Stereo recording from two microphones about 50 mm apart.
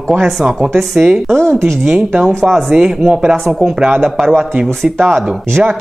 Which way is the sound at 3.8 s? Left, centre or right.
Right.